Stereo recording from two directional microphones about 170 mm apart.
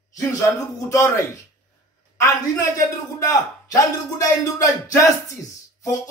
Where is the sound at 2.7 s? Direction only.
20° left (ahead or behind).